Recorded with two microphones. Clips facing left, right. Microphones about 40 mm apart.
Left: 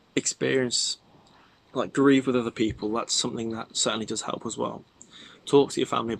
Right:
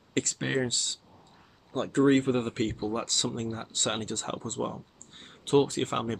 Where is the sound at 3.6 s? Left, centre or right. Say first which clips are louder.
Left 3 dB; left.